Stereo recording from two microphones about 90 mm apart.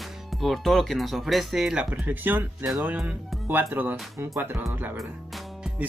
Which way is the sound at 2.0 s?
20° right (ahead or behind).